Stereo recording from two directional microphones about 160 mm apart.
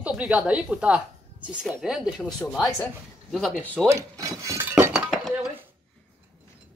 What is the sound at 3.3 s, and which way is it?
Speech, centre (ahead or behind).